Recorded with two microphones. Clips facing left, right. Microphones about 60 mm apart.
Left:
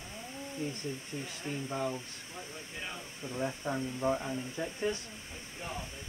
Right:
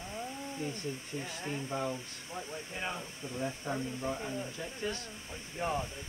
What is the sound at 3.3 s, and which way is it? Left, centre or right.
Speech, left.